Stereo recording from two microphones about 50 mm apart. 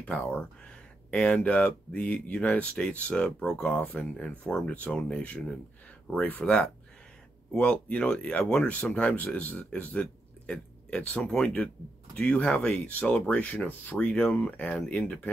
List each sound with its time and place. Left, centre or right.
0.0 s speech: left
3.4 s speech: centre
3.7 s speech: left
13.9 s speech: centre